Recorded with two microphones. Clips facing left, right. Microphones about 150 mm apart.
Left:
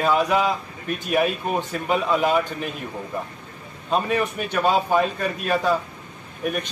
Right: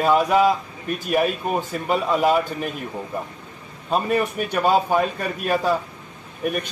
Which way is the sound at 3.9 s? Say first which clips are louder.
Right 1 dB; 5° right (ahead or behind).